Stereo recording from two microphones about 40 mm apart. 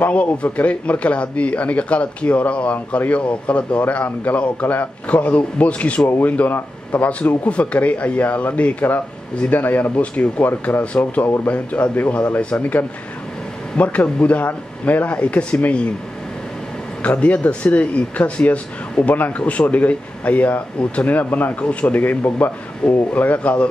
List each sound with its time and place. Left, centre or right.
0.0 s speech: left
12.4 s speech: left
13.7 s speech: left
17.0 s speech: left